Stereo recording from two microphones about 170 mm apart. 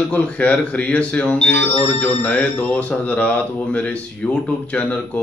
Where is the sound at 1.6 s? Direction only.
40° left (ahead or behind).